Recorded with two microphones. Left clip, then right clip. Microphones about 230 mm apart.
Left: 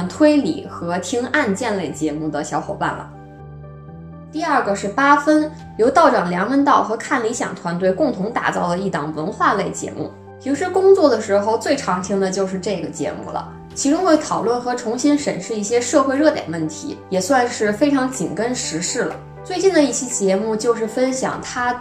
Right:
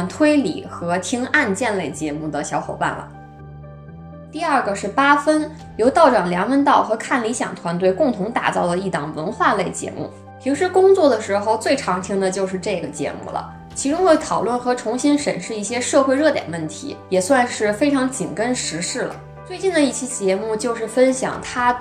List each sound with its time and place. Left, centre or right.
0.2 s speech: right
4.3 s speech: right